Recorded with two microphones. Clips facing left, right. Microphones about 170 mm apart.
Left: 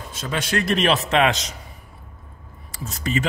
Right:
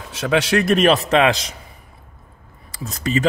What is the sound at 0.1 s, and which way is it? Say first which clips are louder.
Speech: right 8 dB; 75° right (ahead or behind).